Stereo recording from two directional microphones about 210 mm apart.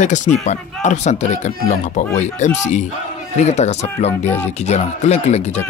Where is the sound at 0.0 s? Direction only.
35° left (ahead or behind).